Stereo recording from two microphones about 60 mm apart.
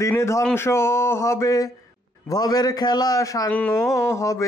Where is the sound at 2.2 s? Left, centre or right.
Left.